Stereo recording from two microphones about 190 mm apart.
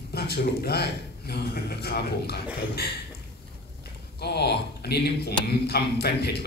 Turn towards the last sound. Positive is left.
turn(degrees=60)  # may be behind; listen again after turning